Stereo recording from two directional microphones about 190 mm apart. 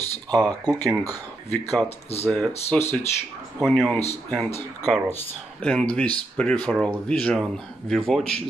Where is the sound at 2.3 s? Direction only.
5° left (ahead or behind).